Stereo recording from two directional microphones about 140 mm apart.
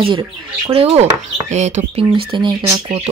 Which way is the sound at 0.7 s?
45° right (ahead or behind).